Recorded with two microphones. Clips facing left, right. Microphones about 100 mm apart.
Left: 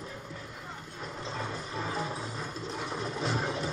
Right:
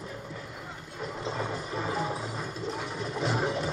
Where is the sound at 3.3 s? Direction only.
20° right (ahead or behind).